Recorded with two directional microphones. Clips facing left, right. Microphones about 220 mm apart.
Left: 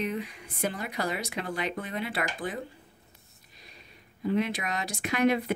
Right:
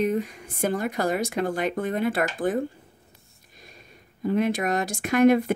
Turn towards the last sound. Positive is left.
turn(degrees=-50)  # may be behind; listen again after turning